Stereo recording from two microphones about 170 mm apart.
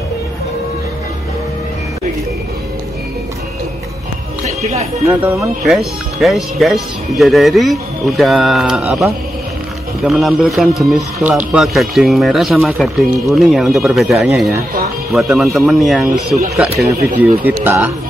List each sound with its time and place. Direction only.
4.5 s music: 40° right (ahead or behind)
5.0 s speech: 15° right (ahead or behind)